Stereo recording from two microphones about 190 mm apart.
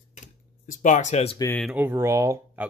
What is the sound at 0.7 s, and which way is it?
Speech, 40° left (ahead or behind).